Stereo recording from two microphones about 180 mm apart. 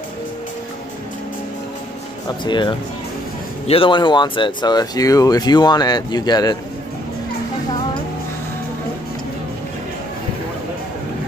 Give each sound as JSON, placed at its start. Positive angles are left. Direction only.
{"t": 2.2, "sound": "speech", "side_deg": 25}